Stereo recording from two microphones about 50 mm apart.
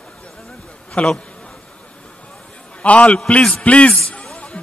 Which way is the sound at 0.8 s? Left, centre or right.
Left.